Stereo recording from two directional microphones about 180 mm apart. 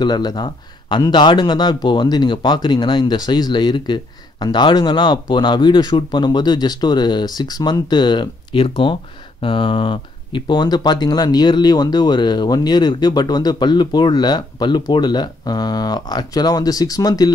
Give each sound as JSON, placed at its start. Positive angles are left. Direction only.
{"t": 0.0, "sound": "speech", "side_deg": 25}